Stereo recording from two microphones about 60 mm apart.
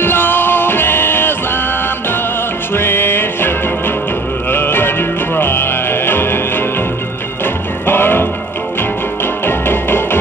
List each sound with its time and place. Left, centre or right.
0.0 s music: left
2.7 s music: left